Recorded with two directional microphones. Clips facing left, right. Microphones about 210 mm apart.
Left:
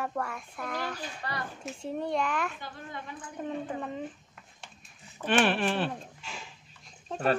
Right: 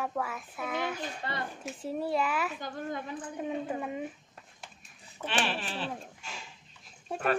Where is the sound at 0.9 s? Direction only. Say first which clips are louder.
Right 1 dB; 25° right (ahead or behind).